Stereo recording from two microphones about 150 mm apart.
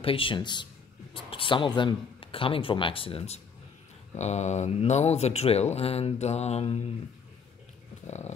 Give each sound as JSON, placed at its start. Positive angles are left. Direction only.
{"t": 0.0, "sound": "speech", "side_deg": 35}
{"t": 4.2, "sound": "speech", "side_deg": 50}